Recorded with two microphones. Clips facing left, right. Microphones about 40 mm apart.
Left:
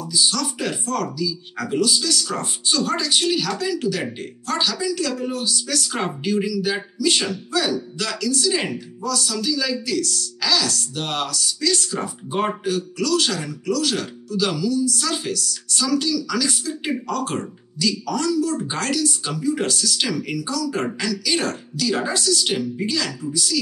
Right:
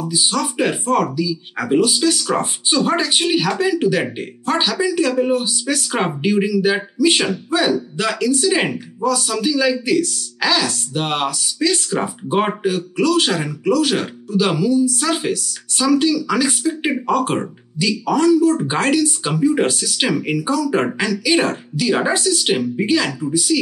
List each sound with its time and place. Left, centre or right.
0.0 s speech: right